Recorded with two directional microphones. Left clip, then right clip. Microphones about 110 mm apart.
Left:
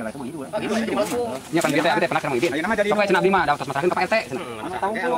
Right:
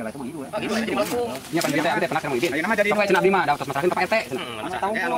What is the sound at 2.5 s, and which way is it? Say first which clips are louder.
Speech: even; centre (ahead or behind).